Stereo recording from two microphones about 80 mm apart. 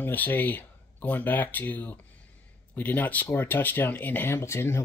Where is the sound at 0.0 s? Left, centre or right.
Left.